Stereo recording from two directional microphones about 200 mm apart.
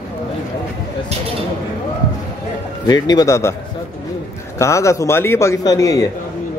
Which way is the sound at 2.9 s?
20° left (ahead or behind).